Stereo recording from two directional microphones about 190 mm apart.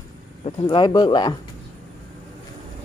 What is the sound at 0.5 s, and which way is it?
Speech, 25° left (ahead or behind).